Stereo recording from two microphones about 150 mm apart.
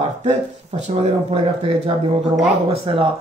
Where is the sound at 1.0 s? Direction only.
40° right (ahead or behind).